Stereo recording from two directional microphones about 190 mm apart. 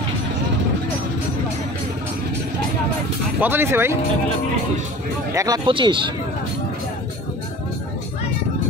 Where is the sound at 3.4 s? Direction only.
10° right (ahead or behind).